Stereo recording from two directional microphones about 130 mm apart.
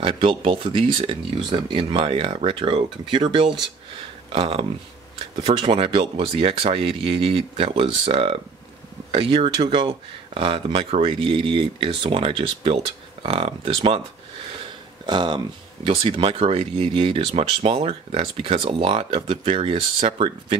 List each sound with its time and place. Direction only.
0.0 s speech: 40° right (ahead or behind)
15.0 s speech: 35° right (ahead or behind)